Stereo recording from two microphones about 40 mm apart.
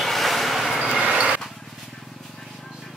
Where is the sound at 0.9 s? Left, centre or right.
Right.